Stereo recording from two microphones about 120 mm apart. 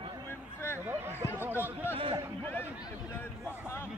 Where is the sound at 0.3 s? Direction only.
20° left (ahead or behind).